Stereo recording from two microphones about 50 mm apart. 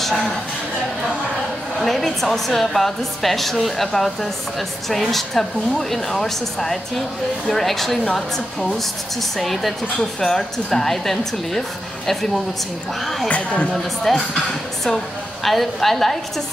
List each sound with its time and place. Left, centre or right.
0.0 s speech: centre
1.8 s a woman's voice: centre
9.4 s a woman's voice: centre
13.3 s speech: left
14.1 s a woman's voice: centre
15.4 s a woman's voice: centre